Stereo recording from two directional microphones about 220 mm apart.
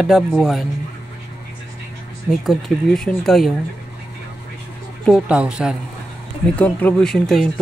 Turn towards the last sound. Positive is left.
turn(degrees=5)  # may be behind; listen again after turning